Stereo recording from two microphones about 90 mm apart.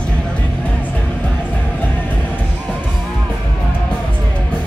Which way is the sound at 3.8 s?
15° left (ahead or behind).